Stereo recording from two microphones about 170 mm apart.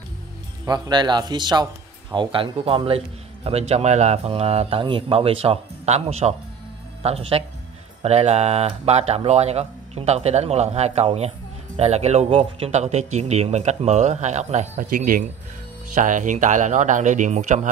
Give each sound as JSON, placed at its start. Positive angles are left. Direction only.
{"t": 0.7, "sound": "a man's voice", "side_deg": -25}